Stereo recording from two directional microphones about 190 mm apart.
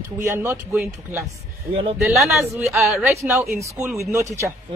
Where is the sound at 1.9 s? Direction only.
Centre (ahead or behind).